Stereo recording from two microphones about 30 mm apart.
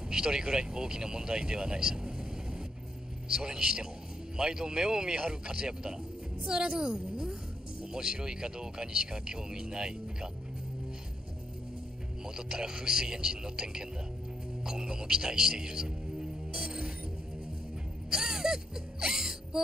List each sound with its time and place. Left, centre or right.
0.1 s a woman's voice: right
12.4 s speech: right
14.6 s music: right
18.1 s music: right